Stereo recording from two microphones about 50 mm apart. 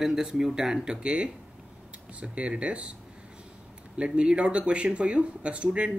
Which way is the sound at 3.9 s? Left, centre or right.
Right.